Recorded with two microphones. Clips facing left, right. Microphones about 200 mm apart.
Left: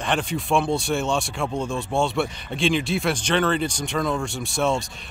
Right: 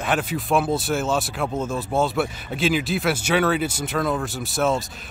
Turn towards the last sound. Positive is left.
turn(degrees=0)  # may be behind; listen again after turning